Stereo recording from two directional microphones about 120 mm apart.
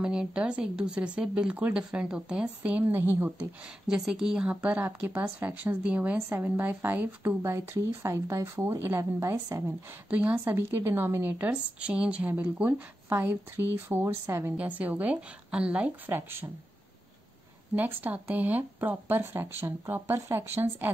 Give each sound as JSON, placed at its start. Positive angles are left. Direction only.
{"t": 0.0, "sound": "speech", "side_deg": -10}
{"t": 3.8, "sound": "speech", "side_deg": -5}
{"t": 14.6, "sound": "speech", "side_deg": -15}
{"t": 17.7, "sound": "speech", "side_deg": -15}